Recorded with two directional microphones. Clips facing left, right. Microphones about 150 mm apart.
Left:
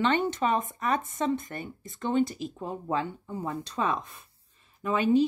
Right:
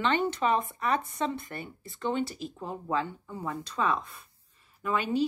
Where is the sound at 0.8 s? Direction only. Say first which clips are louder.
Left 1 dB; 45° left (ahead or behind).